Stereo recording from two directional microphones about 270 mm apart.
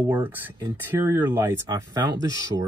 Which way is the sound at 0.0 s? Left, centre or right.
Centre.